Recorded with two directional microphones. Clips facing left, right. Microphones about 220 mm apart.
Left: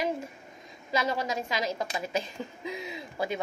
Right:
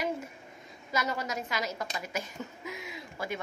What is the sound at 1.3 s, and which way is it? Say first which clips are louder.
A woman's voice: left 3 dB; 25° left (ahead or behind).